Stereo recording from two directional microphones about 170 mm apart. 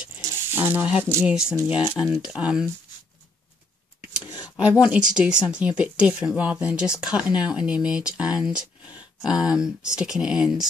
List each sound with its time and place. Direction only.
0.2 s a sound: 10° right (ahead or behind)
1.0 s speech: 10° right (ahead or behind)
1.8 s speech: 25° left (ahead or behind)
2.2 s speech: 5° right (ahead or behind)
4.8 s speech: 5° right (ahead or behind)